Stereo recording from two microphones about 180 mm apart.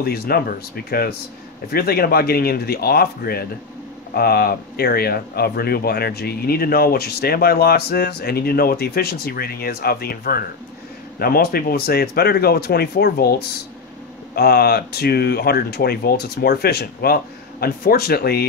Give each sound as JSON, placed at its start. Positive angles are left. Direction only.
{"t": 0.0, "sound": "speech", "side_deg": 60}